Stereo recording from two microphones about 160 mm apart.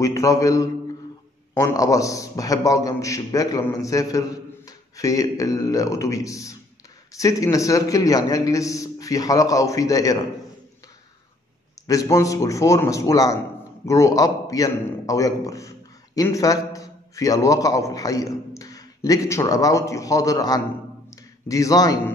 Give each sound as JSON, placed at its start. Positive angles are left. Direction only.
{"t": 0.0, "sound": "a man's voice", "side_deg": 20}
{"t": 11.9, "sound": "a man's voice", "side_deg": 20}